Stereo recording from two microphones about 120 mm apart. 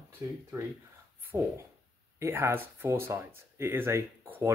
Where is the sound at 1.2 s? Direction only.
15° right (ahead or behind).